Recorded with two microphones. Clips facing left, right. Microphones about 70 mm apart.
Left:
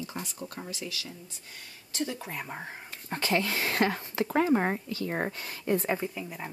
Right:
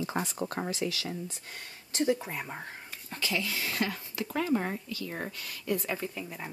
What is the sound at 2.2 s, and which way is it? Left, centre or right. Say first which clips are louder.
Speech: even; centre.